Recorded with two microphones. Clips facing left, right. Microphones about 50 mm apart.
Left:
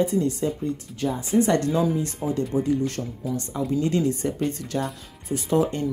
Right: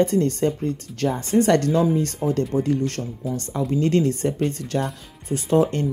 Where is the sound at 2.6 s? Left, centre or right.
Right.